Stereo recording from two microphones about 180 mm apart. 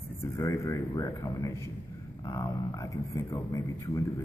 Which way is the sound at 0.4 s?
20° left (ahead or behind).